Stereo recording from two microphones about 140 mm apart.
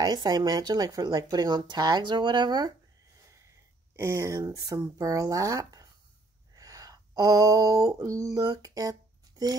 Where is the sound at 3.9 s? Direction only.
20° right (ahead or behind).